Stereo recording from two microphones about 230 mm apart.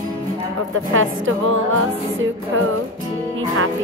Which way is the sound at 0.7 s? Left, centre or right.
Right.